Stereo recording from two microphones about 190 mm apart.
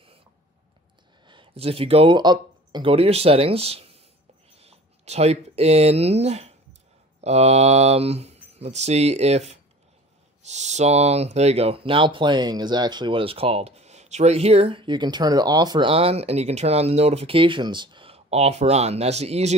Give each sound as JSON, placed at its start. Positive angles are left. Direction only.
{"t": 1.2, "sound": "speech", "side_deg": -25}